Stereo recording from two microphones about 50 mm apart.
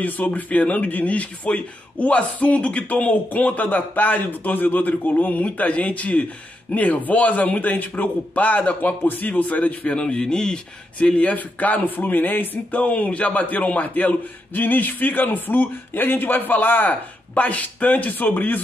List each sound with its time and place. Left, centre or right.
0.0 s speech: left
9.0 s speech: left
9.3 s speech: left